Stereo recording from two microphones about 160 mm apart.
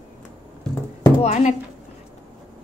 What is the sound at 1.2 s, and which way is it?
Speech, 45° left (ahead or behind).